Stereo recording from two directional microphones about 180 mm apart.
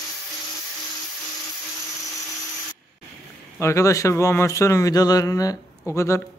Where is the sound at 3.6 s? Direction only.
15° left (ahead or behind).